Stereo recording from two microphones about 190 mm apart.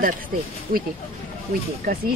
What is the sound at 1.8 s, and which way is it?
Speech, 50° right (ahead or behind).